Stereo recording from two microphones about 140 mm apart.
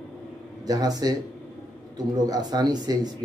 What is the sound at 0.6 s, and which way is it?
Speech, 25° right (ahead or behind).